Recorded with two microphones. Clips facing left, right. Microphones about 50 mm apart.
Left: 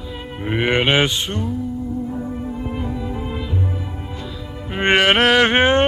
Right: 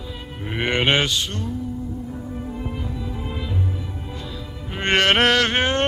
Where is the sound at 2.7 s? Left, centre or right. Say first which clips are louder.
Left 5 dB; left.